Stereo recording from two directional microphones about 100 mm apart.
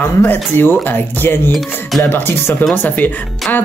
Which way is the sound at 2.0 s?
20° left (ahead or behind).